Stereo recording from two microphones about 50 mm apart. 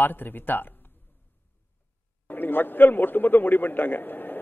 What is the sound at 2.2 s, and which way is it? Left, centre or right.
Speech, left.